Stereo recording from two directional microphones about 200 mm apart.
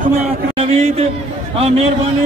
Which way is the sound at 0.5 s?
30° right (ahead or behind).